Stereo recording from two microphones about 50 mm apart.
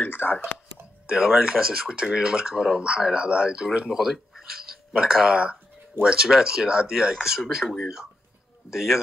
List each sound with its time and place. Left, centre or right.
0.0 s a sound: left
1.0 s speech: centre
3.9 s speech: centre
5.2 s speech: centre